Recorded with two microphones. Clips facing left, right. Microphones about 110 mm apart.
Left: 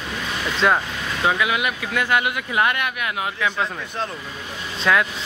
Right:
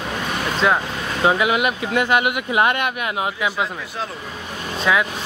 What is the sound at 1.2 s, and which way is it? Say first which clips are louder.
Speech: right 4 dB; 25° right (ahead or behind).